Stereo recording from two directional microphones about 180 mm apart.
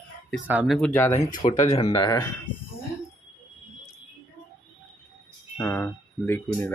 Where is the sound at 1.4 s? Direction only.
40° left (ahead or behind).